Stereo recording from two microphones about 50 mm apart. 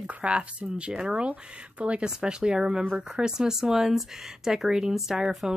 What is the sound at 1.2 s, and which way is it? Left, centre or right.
Speech, right.